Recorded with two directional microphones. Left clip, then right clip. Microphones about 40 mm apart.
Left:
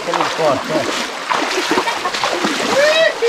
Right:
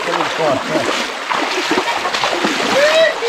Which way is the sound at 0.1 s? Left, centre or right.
Left.